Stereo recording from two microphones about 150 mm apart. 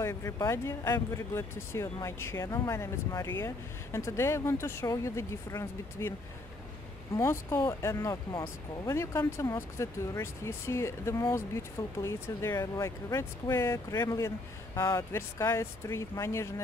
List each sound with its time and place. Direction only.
0.0 s speech: 20° left (ahead or behind)
7.2 s speech: 15° left (ahead or behind)